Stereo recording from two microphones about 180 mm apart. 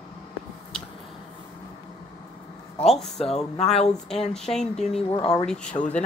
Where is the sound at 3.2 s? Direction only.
35° left (ahead or behind).